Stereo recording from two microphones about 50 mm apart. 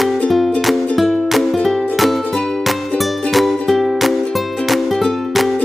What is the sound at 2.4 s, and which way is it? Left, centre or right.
Music, centre.